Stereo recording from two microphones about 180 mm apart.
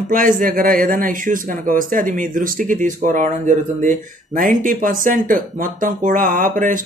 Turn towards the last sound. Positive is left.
turn(degrees=-45)  # may be behind; listen again after turning